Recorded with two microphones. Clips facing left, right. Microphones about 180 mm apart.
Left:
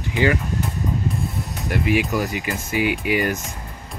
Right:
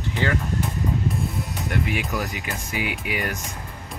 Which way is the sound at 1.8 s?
5° left (ahead or behind).